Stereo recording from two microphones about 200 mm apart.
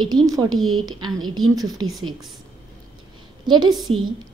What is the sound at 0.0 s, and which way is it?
Speech, 20° right (ahead or behind).